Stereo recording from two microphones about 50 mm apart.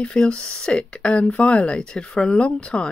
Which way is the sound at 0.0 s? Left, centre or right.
Centre.